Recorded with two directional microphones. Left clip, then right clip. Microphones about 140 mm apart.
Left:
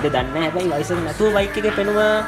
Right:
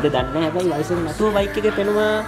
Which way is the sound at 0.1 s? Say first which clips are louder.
Even; centre (ahead or behind).